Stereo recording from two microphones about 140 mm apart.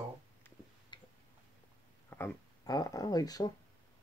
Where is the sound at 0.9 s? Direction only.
35° left (ahead or behind).